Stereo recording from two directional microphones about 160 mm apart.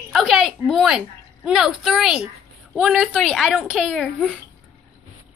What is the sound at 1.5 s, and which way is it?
A woman's voice, 5° right (ahead or behind).